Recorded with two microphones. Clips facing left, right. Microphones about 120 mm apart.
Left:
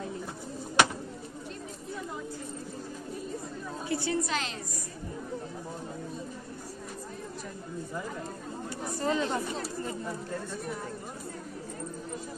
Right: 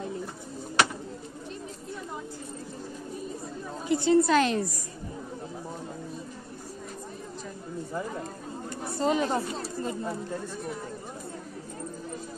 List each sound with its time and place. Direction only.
3.9 s a woman's voice: 20° right (ahead or behind)
4.3 s a woman's voice: 55° right (ahead or behind)
8.9 s a woman's voice: 20° right (ahead or behind)